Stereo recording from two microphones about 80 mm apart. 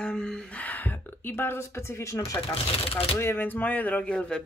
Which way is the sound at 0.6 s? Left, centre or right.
Left.